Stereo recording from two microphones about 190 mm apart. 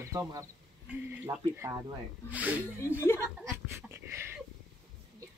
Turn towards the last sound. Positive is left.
turn(degrees=-10)  # may be behind; listen again after turning